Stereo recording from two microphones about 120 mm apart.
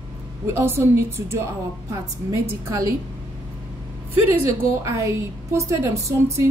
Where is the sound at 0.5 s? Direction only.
20° right (ahead or behind).